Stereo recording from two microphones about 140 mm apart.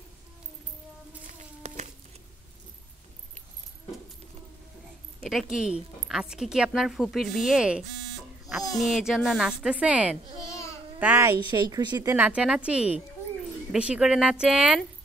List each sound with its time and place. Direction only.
1.6 s a sound: 55° right (ahead or behind)
5.2 s a woman's voice: centre (ahead or behind); by 11.3 s 15° right (ahead or behind)
11.5 s a woman's voice: 30° right (ahead or behind)
12.2 s speech: 10° right (ahead or behind)